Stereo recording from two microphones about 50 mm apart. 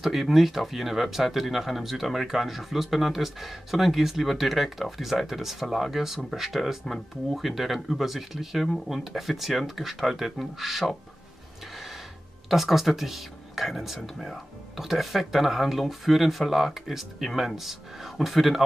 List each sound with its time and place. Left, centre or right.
0.0 s speech: centre
11.7 s a sound: centre
12.4 s speech: centre